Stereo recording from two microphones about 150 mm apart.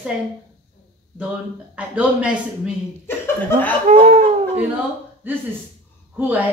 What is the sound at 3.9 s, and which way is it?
Speech, 45° right (ahead or behind).